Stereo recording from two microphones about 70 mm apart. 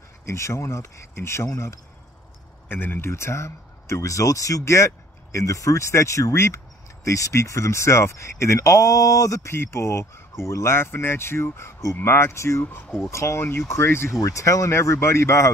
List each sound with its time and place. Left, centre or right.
0.2 s speech: left
2.7 s speech: left
3.1 s speech: left
12.6 s speech: left
13.1 s speech: left
14.2 s speech: left